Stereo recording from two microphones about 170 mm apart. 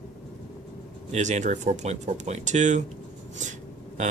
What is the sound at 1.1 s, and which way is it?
Speech, 45° right (ahead or behind).